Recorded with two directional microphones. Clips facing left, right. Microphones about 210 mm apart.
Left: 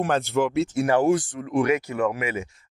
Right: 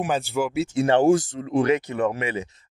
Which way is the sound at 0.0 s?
5° right (ahead or behind).